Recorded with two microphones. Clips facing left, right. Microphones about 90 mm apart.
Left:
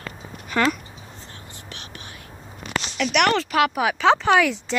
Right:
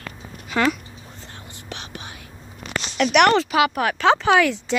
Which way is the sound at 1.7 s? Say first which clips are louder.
Right 7 dB; 90° right.